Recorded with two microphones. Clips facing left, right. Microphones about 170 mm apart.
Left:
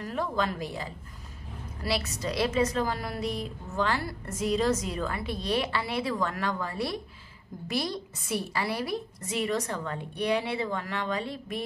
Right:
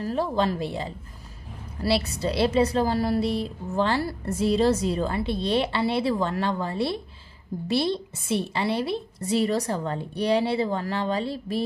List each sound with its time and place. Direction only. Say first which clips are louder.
0.0 s a woman's voice: right 5 dB; 30° right (ahead or behind)